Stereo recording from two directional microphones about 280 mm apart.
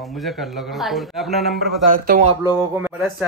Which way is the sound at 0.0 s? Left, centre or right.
Centre.